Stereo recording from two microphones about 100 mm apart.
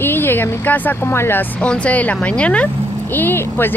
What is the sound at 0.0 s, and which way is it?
Speech, 20° left (ahead or behind).